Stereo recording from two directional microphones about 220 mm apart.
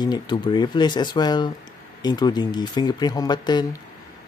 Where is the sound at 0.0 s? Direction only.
20° left (ahead or behind).